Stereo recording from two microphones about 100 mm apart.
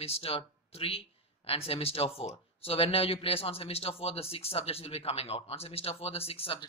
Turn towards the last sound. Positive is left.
turn(degrees=75)  # may be behind; listen again after turning